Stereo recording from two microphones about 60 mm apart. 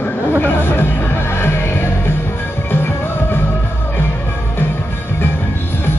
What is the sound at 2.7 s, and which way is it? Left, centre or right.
Music, left.